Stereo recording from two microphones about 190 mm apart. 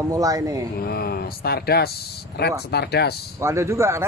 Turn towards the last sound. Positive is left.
turn(degrees=-15)  # may be behind; listen again after turning